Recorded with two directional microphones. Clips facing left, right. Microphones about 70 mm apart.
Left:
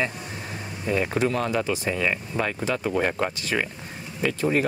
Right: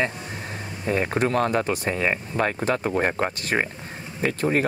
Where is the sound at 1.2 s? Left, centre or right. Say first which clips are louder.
Right 2 dB; right.